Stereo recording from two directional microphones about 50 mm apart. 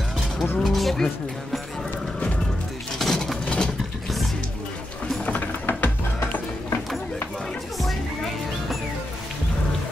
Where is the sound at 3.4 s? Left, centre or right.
Centre.